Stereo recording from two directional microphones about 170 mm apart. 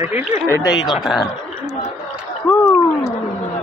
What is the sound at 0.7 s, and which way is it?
Speech, centre (ahead or behind).